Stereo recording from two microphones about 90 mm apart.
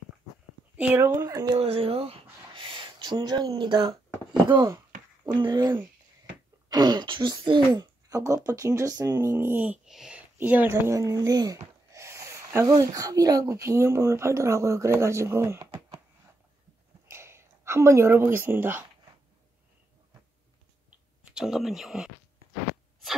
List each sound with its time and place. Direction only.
0.7 s speech: 15° right (ahead or behind)
1.0 s speech: 35° right (ahead or behind)
1.6 s speech: 90° right; by 3.5 s 50° right (ahead or behind)
3.5 s speech: 65° right (ahead or behind)
4.6 s a sound: 40° right (ahead or behind)
5.3 s speech: 55° right (ahead or behind)
6.7 s speech: 50° right (ahead or behind); by 9.8 s 20° right (ahead or behind)
9.8 s speech: 5° right (ahead or behind)
10.3 s speech: 20° right (ahead or behind)
10.9 s speech: 40° right (ahead or behind)
17.1 s a woman's voice: 30° right (ahead or behind)
21.2 s speech: 10° right (ahead or behind)